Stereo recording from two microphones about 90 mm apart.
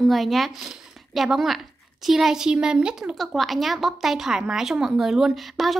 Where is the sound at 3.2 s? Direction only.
Centre (ahead or behind).